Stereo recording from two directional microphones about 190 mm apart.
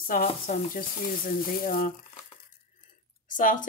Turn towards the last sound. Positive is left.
turn(degrees=45)  # may be behind; listen again after turning